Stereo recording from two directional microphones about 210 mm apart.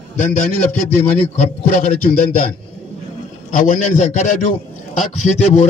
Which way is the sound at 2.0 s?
40° left (ahead or behind).